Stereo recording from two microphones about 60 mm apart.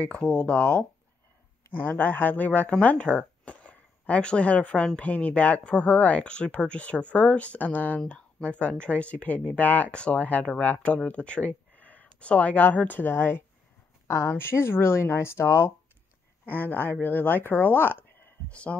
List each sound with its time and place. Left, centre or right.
0.2 s speech: centre
1.7 s speech: left
16.4 s speech: left
18.5 s speech: left